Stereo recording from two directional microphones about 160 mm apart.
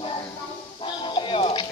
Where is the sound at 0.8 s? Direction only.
30° left (ahead or behind).